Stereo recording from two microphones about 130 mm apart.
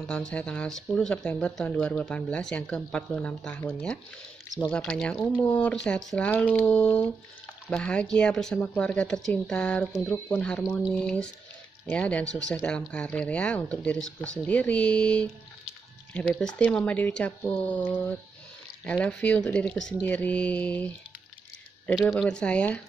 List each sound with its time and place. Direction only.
0.0 s speech: 5° left (ahead or behind)
10.6 s speech: 10° right (ahead or behind)
10.9 s speech: 5° left (ahead or behind)
22.1 s speech: 5° left (ahead or behind)